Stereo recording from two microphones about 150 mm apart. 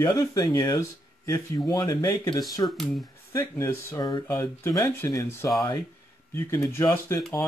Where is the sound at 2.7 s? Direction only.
Centre (ahead or behind).